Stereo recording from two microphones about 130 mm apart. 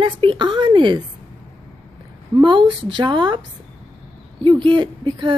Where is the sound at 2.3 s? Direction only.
40° right (ahead or behind).